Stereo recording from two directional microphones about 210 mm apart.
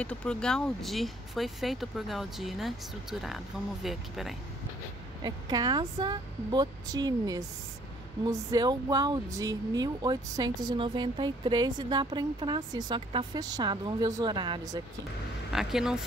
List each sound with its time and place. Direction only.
0.0 s speech: 5° left (ahead or behind)
5.2 s speech: 20° right (ahead or behind)
15.5 s speech: centre (ahead or behind)